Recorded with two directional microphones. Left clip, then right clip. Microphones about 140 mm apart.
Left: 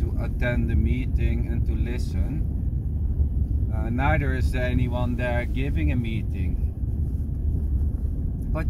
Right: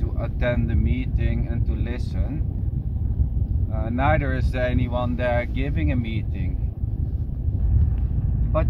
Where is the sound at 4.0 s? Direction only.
60° right (ahead or behind).